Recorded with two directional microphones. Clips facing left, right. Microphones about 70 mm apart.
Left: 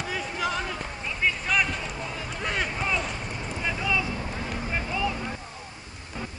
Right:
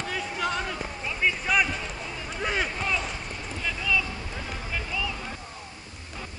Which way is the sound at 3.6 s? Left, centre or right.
Left.